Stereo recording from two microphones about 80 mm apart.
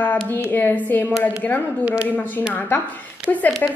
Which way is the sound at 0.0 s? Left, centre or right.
Centre.